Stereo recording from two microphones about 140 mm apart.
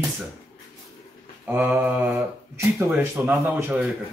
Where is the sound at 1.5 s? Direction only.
15° right (ahead or behind).